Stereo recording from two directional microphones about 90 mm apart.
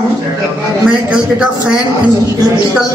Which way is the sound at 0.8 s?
5° right (ahead or behind).